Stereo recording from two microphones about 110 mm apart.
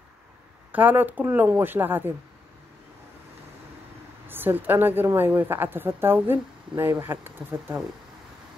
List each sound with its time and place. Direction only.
0.7 s speech: 15° right (ahead or behind)
4.3 s speech: 20° right (ahead or behind)